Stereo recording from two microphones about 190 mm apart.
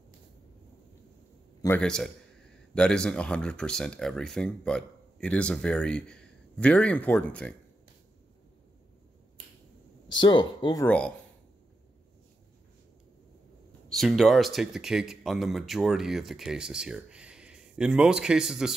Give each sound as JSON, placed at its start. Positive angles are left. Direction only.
{"t": 1.8, "sound": "speech", "side_deg": 5}
{"t": 10.0, "sound": "speech", "side_deg": 25}
{"t": 10.9, "sound": "speech", "side_deg": 5}
{"t": 13.8, "sound": "speech", "side_deg": 0}